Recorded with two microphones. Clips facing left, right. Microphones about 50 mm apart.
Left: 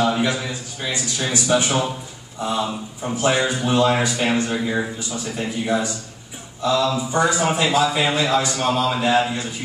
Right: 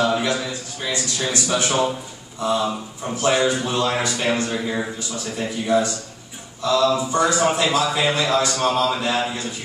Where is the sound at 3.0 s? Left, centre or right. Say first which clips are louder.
Right 1 dB; left.